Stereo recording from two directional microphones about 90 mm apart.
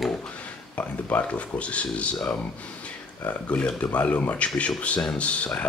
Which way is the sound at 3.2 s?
15° left (ahead or behind).